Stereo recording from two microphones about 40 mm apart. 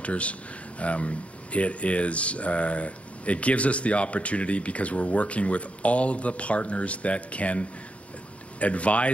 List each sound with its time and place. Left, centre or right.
0.0 s speech: left